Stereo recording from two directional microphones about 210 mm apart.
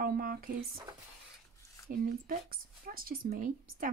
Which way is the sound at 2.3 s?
45° right (ahead or behind).